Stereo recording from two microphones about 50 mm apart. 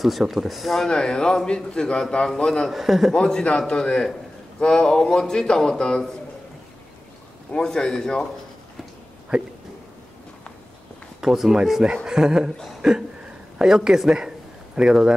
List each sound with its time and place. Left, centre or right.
0.2 s speech: centre
0.8 s a man's voice: centre
2.7 s speech: centre
3.5 s a man's voice: centre
7.5 s a man's voice: centre
11.1 s speech: centre